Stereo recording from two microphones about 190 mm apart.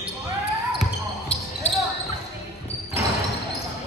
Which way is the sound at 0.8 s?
5° left (ahead or behind).